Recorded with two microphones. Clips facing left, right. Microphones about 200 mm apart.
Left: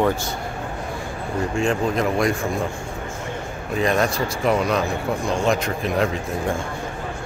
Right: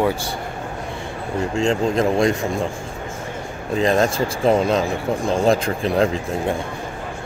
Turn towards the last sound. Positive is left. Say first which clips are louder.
# right 2 dB
turn(degrees=-30)  # may be behind; listen again after turning